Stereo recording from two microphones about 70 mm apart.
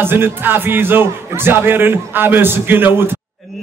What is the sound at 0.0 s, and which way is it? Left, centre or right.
Speech, right.